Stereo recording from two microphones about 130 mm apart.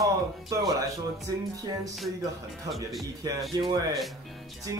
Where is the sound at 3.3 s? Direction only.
35° right (ahead or behind).